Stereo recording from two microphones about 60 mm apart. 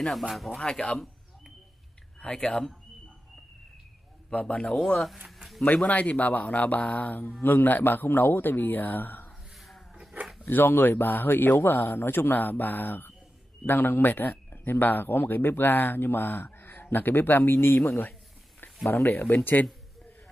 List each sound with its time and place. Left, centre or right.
0.7 s a man's voice: centre
2.1 s speech: centre
4.3 s a man's voice: centre
5.9 s speech: left
9.6 s a sound: centre
10.4 s speech: left